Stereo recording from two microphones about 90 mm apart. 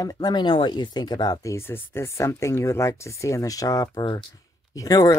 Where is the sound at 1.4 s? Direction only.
30° left (ahead or behind).